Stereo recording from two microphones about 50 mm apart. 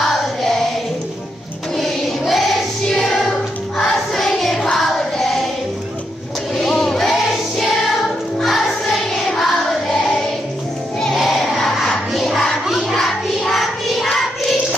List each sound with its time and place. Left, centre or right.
0.0 s music: centre
1.8 s choir: centre
6.5 s music: centre
11.1 s crowd: centre
12.9 s music: centre